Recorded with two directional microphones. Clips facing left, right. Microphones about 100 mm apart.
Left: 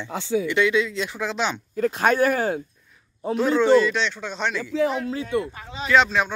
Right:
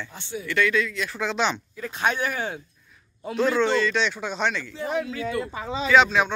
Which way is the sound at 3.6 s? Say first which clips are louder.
Left 9 dB; 10° left (ahead or behind).